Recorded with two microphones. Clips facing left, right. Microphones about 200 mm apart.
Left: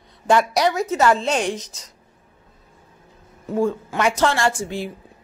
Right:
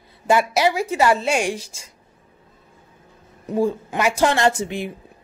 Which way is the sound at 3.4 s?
15° right (ahead or behind).